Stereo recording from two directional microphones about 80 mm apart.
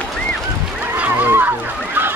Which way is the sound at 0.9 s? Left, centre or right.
Right.